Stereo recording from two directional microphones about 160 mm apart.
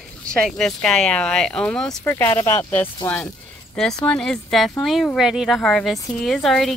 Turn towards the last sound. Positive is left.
turn(degrees=5)  # may be behind; listen again after turning